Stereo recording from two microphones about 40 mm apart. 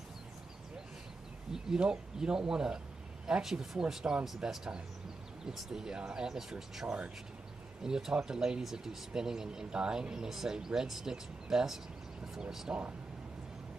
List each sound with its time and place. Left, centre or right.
1.5 s speech: centre
5.4 s speech: centre